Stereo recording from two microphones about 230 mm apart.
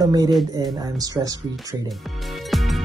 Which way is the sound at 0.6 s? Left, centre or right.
Centre.